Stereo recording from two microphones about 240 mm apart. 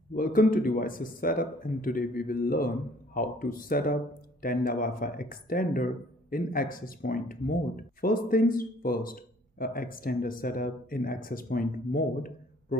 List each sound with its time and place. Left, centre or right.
0.1 s speech: left